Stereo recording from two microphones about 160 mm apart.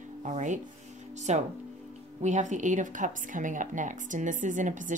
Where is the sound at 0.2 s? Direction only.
50° right (ahead or behind).